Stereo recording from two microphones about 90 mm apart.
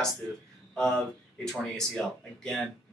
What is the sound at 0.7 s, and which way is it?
Speech, 5° left (ahead or behind).